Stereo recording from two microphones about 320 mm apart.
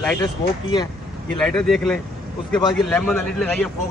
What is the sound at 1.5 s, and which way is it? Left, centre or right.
Speech, centre.